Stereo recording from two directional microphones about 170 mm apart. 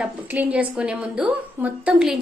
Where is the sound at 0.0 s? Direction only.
10° right (ahead or behind).